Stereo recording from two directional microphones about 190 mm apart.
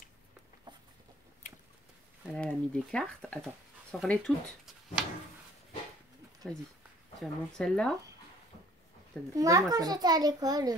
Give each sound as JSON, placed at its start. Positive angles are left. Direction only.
{"t": 0.7, "sound": "chicken", "side_deg": -25}
{"t": 1.4, "sound": "a sound", "side_deg": 40}
{"t": 2.3, "sound": "speech", "side_deg": 5}
{"t": 6.4, "sound": "speech", "side_deg": 5}
{"t": 9.3, "sound": "a child's voice", "side_deg": -20}